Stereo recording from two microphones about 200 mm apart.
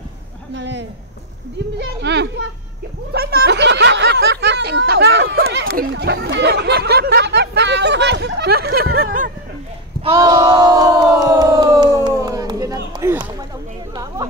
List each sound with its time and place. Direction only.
0.6 s a sound: 65° right (ahead or behind)
2.0 s a child's voice: 60° right (ahead or behind)
3.1 s snicker: 55° right (ahead or behind)
5.8 s chatter: 55° right (ahead or behind)
10.1 s crowd: 20° right (ahead or behind)